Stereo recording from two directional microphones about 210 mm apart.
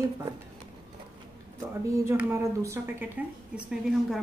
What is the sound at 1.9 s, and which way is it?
A woman's voice, 10° right (ahead or behind).